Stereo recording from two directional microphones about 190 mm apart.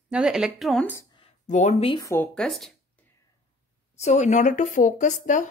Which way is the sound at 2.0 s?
15° left (ahead or behind).